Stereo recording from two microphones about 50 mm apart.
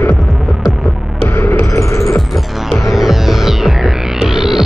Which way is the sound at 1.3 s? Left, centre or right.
Left.